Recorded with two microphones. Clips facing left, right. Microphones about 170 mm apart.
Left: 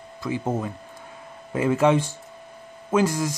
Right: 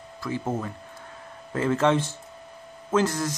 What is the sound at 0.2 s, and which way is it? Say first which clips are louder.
Speech: left 3 dB; 20° left (ahead or behind).